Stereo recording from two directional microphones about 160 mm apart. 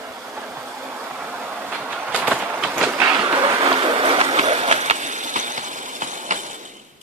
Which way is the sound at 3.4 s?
30° right (ahead or behind).